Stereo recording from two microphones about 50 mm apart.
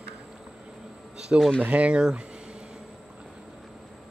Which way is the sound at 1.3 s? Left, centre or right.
Right.